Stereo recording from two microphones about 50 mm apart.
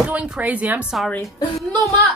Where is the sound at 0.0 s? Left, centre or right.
Right.